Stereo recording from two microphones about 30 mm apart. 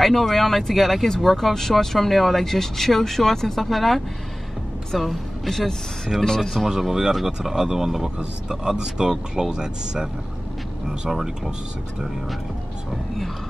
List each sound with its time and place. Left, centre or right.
0.0 s a woman's voice: centre
5.5 s speech: centre
6.9 s speech: centre
11.1 s speech: centre